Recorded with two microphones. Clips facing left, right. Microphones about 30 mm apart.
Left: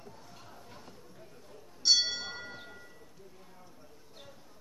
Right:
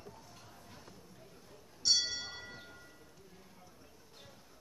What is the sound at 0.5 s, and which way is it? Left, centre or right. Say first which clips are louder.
Chatter: left 4 dB; left.